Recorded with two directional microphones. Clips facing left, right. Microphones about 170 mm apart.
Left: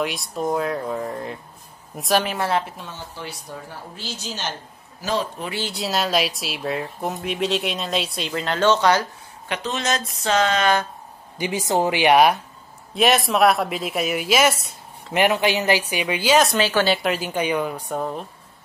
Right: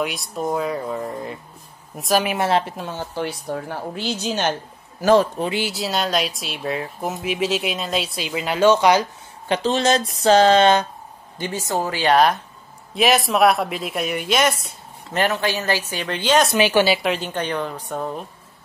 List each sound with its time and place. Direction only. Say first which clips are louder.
0.0 s speech: even; centre (ahead or behind)
2.2 s a woman's voice: right 3 dB; 20° right (ahead or behind)
2.6 s a woman's voice: right 6 dB; 50° right (ahead or behind)
5.7 s speech: even; centre (ahead or behind)
9.5 s a sound: right 6 dB; 30° right (ahead or behind)
11.3 s speech: left 3 dB; 10° left (ahead or behind)
12.9 s speech: right 1 dB; centre (ahead or behind)
15.1 s speech: left 2 dB; 15° left (ahead or behind)
16.5 s speech: right 3 dB; 15° right (ahead or behind); by 18.2 s 5° left (ahead or behind)